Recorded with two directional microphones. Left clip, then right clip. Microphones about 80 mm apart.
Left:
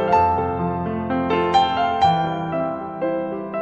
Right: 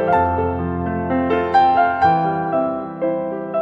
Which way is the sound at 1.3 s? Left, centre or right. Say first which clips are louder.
Right 3 dB; left.